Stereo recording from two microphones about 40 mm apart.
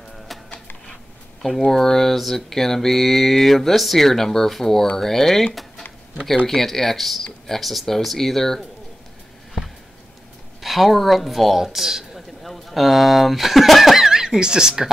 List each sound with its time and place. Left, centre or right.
1.6 s speech: centre
10.6 s speech: centre